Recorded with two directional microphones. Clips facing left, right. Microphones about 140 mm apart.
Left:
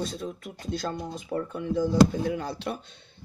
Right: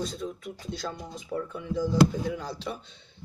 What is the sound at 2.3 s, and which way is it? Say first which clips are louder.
Speech: left 3 dB; 60° left (ahead or behind).